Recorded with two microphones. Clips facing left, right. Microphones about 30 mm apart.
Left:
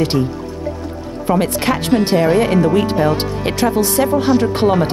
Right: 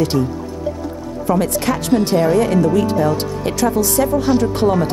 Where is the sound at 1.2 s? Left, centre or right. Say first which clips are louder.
Left 1 dB; left.